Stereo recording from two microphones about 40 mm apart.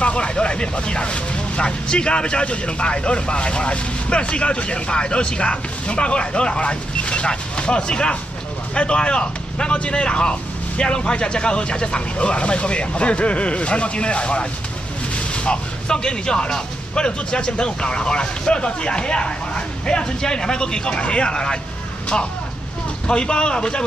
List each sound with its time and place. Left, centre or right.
0.0 s speech: left